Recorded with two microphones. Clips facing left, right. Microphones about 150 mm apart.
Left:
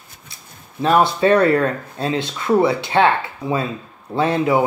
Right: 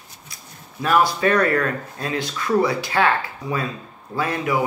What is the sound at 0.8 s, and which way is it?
Speech, 25° left (ahead or behind).